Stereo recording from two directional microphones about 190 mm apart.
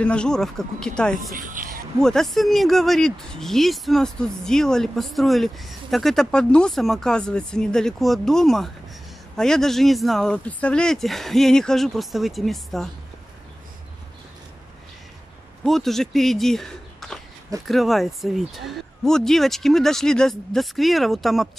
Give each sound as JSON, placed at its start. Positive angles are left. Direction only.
{"t": 0.0, "sound": "speech", "side_deg": 5}
{"t": 1.3, "sound": "speech", "side_deg": -45}
{"t": 2.0, "sound": "speech", "side_deg": 5}
{"t": 15.6, "sound": "speech", "side_deg": 0}